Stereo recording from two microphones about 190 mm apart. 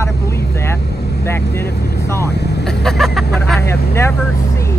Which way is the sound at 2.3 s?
60° left (ahead or behind).